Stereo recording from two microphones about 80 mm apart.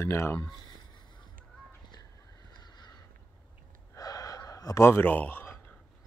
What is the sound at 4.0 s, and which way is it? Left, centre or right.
Gasp, left.